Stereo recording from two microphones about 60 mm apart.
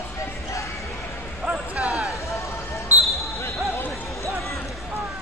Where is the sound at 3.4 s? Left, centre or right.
Left.